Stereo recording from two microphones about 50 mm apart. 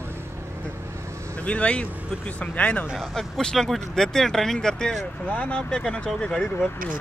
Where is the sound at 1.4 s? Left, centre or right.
Left.